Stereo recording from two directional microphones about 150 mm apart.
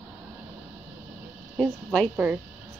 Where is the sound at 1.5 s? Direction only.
Centre (ahead or behind).